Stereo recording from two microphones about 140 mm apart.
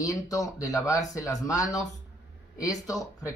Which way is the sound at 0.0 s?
25° left (ahead or behind).